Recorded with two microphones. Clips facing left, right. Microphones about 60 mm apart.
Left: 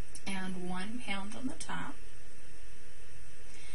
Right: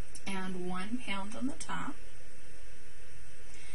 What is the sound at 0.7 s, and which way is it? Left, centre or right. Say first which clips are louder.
A woman's voice: right 2 dB; right.